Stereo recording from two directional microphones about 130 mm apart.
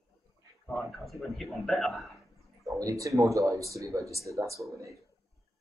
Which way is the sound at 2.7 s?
25° right (ahead or behind).